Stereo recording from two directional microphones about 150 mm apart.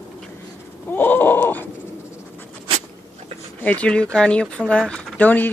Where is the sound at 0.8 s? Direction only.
15° left (ahead or behind).